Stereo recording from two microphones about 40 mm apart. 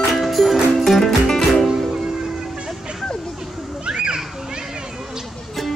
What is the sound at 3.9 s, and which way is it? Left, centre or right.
Splash, right.